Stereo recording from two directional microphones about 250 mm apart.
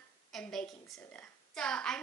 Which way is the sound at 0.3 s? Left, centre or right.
Centre.